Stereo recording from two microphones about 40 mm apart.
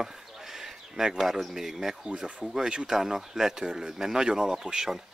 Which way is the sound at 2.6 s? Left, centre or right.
Centre.